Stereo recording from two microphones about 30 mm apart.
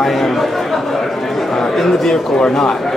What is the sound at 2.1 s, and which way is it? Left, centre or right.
Speech, centre.